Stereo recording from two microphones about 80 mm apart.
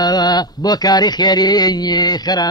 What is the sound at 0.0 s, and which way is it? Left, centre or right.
A man's voice, left.